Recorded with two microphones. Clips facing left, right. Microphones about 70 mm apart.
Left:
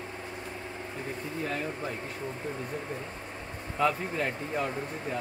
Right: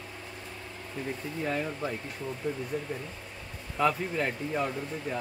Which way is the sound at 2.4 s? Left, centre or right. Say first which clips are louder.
Right 5 dB; left.